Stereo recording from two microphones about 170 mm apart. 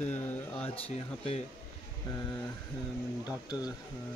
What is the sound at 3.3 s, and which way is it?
Speech, 25° left (ahead or behind).